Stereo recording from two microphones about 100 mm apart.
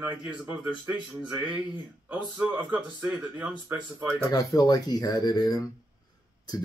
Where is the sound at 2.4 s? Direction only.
15° right (ahead or behind).